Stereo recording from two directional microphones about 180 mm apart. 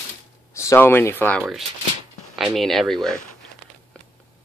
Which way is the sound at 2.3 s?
Centre (ahead or behind).